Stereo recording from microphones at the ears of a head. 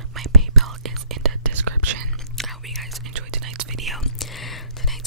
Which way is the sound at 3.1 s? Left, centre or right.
Right.